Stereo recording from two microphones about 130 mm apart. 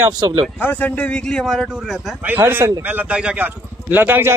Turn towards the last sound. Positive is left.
turn(degrees=-15)  # may be behind; listen again after turning